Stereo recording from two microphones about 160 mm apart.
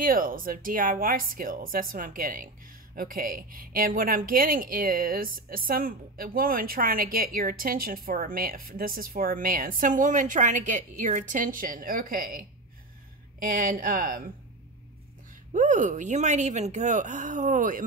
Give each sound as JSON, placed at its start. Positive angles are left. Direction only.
{"t": 0.0, "sound": "speech", "side_deg": -60}
{"t": 15.5, "sound": "speech", "side_deg": -50}